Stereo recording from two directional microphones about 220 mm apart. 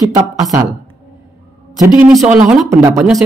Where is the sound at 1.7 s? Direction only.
15° right (ahead or behind).